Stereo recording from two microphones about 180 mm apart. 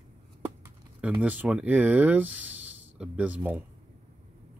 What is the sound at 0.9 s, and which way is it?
Speech, 10° right (ahead or behind).